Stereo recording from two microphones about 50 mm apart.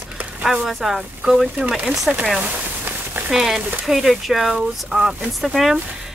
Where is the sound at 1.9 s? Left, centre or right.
Right.